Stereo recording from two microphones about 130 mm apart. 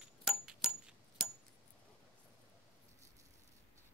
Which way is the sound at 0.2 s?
5° right (ahead or behind).